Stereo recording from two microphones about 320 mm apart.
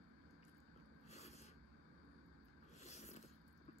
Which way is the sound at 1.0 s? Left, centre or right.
Centre.